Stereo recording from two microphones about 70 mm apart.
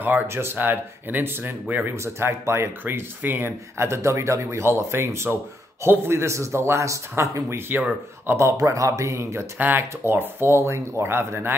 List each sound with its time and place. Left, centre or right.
0.3 s speech: right
2.1 s speech: right
9.6 s speech: right